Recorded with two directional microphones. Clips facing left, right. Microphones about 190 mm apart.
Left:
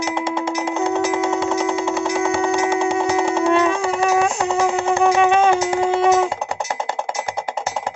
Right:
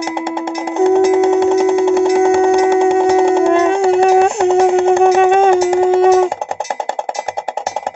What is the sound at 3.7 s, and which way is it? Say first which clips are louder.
Music: right 8 dB; 65° right (ahead or behind).